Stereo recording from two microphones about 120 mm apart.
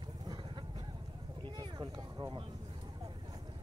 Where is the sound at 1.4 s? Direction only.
40° right (ahead or behind).